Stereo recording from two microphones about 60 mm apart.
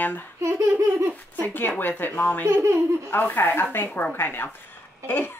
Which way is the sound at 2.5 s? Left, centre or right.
Right.